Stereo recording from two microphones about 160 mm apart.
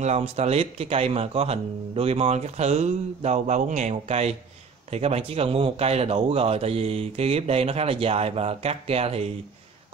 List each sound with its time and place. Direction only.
0.0 s speech: 45° right (ahead or behind)